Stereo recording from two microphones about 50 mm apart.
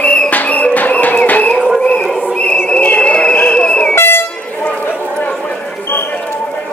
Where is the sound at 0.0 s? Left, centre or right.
Left.